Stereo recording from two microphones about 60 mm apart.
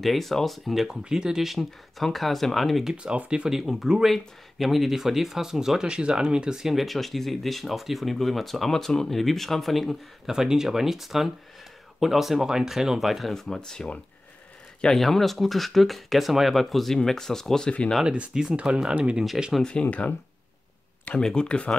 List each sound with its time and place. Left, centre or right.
0.0 s speech: centre
1.0 s speech: centre
2.9 s speech: centre
15.0 s speech: centre
18.0 s speech: centre
19.6 s speech: centre
21.2 s speech: centre